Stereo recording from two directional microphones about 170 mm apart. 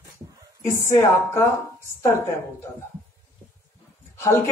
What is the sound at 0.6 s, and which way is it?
Speech, 15° left (ahead or behind).